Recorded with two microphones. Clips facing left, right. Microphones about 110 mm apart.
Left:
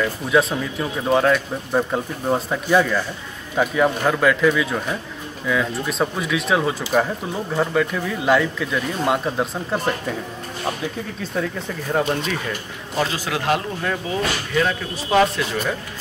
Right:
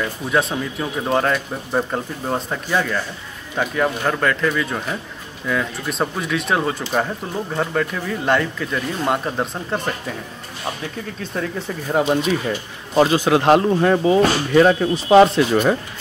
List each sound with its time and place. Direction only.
0.3 s speech: centre (ahead or behind)
11.3 s speech: 5° left (ahead or behind)
12.4 s speech: 30° right (ahead or behind)